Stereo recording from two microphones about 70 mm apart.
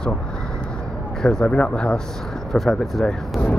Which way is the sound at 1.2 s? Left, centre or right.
Centre.